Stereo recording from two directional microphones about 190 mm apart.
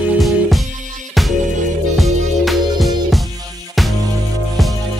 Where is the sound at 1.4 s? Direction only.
40° right (ahead or behind).